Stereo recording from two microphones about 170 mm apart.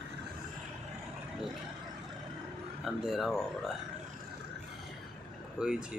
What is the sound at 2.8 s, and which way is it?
Speech, centre (ahead or behind).